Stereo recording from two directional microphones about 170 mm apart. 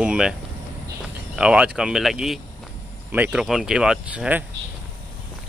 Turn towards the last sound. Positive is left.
turn(degrees=-10)  # may be behind; listen again after turning